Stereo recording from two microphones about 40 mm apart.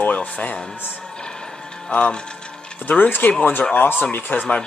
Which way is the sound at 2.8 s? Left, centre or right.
Left.